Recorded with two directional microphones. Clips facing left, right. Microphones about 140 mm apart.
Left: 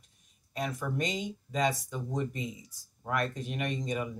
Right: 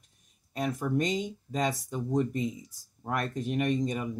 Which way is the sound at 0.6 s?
45° right (ahead or behind).